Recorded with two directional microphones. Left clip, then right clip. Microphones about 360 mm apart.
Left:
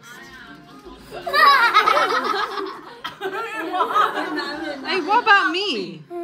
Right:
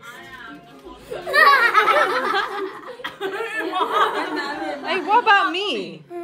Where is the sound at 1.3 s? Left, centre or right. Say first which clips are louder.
Even; centre.